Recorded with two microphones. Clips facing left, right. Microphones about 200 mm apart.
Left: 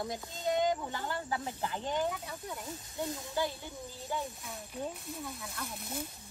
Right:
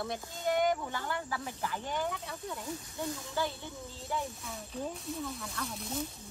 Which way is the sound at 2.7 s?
20° left (ahead or behind).